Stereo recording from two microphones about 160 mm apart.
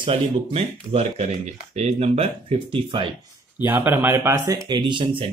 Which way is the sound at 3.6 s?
10° right (ahead or behind).